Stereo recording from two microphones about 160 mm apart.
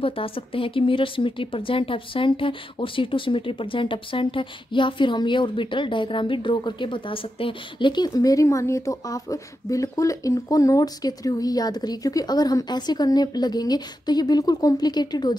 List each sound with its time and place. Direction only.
0.0 s speech: 35° left (ahead or behind)